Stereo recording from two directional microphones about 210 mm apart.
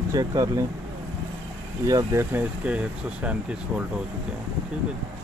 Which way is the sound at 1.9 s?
15° right (ahead or behind).